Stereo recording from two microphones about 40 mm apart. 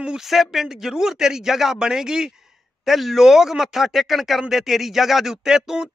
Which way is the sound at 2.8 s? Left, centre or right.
Centre.